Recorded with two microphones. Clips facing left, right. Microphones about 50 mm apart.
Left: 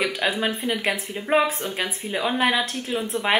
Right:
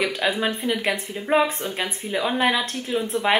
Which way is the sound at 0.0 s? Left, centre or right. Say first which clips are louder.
Right 1 dB; centre.